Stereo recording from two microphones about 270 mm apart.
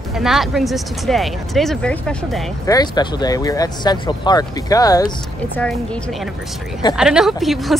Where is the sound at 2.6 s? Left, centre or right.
Centre.